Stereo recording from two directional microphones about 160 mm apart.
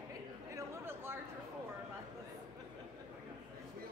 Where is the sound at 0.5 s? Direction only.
15° right (ahead or behind).